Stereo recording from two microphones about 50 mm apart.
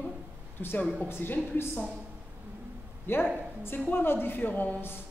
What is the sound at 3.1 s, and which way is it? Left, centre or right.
A woman's voice, left.